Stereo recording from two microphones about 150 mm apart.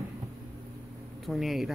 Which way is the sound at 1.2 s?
Centre (ahead or behind).